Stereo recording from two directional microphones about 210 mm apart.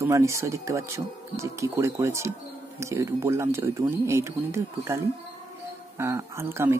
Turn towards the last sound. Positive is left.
turn(degrees=-10)  # may be behind; listen again after turning